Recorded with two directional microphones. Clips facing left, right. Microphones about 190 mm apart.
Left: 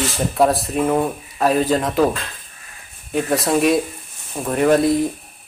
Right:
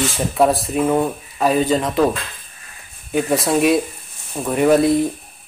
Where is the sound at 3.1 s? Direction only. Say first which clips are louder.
Right 1 dB; centre (ahead or behind).